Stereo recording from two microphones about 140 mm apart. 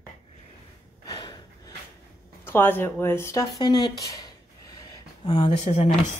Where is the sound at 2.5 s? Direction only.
15° left (ahead or behind); by 5.5 s 30° left (ahead or behind).